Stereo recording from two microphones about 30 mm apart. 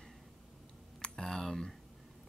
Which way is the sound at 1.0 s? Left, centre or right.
Centre.